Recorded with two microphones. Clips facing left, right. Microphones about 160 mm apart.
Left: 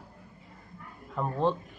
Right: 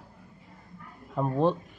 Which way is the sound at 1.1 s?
15° right (ahead or behind).